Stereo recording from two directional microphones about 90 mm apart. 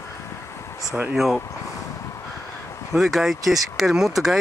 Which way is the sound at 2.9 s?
Centre (ahead or behind).